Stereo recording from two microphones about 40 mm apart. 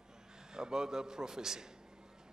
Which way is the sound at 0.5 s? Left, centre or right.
Centre.